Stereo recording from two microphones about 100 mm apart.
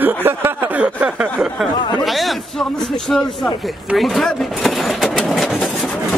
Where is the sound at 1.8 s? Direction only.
45° left (ahead or behind).